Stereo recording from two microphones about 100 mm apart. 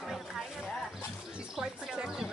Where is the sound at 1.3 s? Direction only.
5° right (ahead or behind).